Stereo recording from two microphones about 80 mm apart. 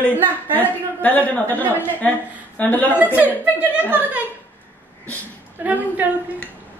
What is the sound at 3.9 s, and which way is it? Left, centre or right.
Speech, right.